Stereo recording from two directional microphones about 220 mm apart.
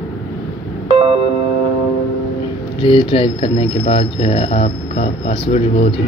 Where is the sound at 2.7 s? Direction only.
25° left (ahead or behind).